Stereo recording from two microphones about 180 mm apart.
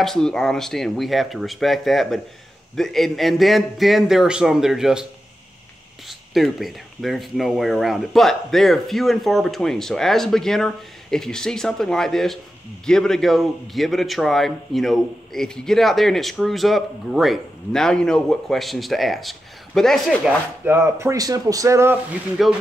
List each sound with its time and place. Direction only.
0.0 s a man's voice: 5° left (ahead or behind)
6.0 s a man's voice: centre (ahead or behind)
20.6 s speech: 15° right (ahead or behind)
22.4 s a man's voice: centre (ahead or behind)